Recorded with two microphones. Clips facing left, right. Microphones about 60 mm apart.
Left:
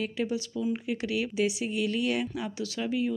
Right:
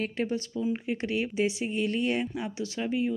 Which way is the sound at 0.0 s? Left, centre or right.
Right.